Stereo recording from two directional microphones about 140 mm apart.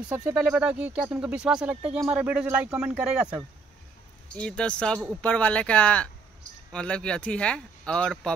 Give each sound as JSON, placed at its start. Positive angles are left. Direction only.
{"t": 0.1, "sound": "speech", "side_deg": -15}
{"t": 4.4, "sound": "speech", "side_deg": 5}